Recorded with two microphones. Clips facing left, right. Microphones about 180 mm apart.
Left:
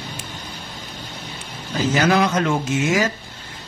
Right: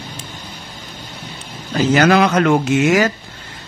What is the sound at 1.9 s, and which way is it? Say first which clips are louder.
Speech: right 5 dB; 70° right (ahead or behind).